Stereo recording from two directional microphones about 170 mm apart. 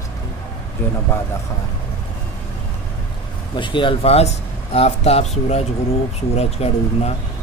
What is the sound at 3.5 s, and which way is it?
Speech, 30° left (ahead or behind).